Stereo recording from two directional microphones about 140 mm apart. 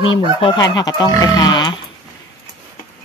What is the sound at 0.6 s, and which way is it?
Speech, 25° left (ahead or behind).